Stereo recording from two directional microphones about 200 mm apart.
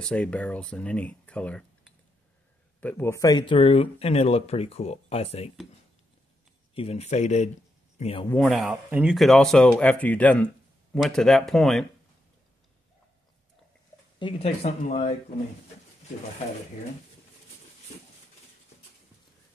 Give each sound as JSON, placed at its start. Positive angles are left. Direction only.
{"t": 0.0, "sound": "speech", "side_deg": 5}
{"t": 2.8, "sound": "speech", "side_deg": 10}
{"t": 6.7, "sound": "speech", "side_deg": 30}
{"t": 8.4, "sound": "speech", "side_deg": 0}
{"t": 14.2, "sound": "speech", "side_deg": 30}